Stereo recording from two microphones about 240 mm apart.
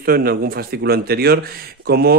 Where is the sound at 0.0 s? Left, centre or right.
Right.